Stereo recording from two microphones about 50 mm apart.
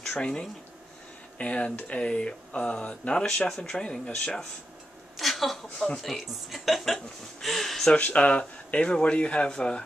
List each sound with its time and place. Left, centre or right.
0.0 s speech: centre
1.4 s speech: left
3.4 s speech: centre
5.1 s a sound: centre
6.0 s speech: centre
8.0 s speech: left